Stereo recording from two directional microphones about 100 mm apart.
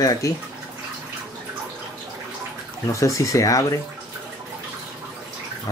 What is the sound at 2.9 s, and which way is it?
Speech, 35° left (ahead or behind).